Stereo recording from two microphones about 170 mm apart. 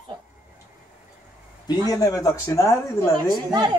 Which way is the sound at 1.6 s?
20° left (ahead or behind).